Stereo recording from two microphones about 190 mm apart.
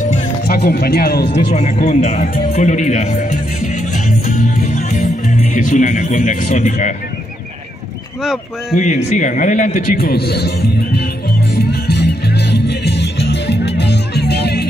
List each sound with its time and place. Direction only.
0.1 s music: 55° left (ahead or behind)
1.5 s a man's voice: 40° left (ahead or behind)
8.2 s speech: centre (ahead or behind)
8.7 s a man's voice: 40° left (ahead or behind); by 11.1 s 60° left (ahead or behind)
11.5 s music: 60° left (ahead or behind)